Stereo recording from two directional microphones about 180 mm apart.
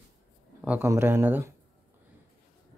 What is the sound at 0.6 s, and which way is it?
Speech, 10° right (ahead or behind).